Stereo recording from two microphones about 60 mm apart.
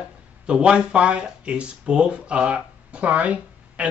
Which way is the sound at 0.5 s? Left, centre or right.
Centre.